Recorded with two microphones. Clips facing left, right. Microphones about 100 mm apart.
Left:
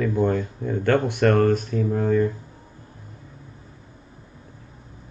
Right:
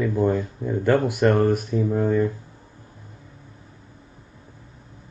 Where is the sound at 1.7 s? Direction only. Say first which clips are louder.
Even; 25° right (ahead or behind).